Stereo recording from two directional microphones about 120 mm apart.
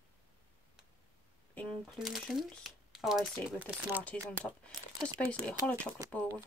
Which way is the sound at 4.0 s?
10° left (ahead or behind).